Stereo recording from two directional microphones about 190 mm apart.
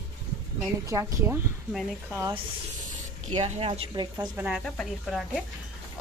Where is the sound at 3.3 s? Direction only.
35° right (ahead or behind).